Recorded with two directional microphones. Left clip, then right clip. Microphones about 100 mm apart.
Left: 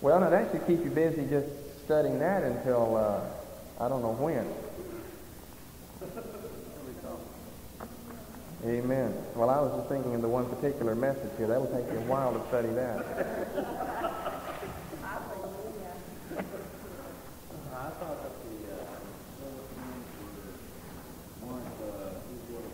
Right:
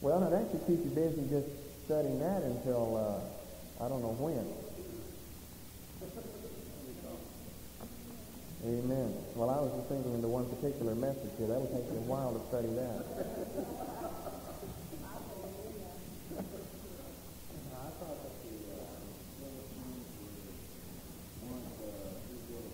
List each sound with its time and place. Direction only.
0.0 s a man's voice: 20° right (ahead or behind)
8.6 s a man's voice: 5° right (ahead or behind)
15.0 s a sound: 10° right (ahead or behind)